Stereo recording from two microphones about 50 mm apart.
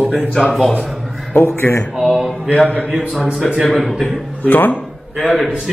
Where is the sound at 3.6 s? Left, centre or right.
Centre.